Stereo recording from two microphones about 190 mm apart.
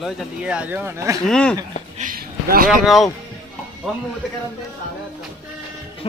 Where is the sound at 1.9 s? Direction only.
50° right (ahead or behind).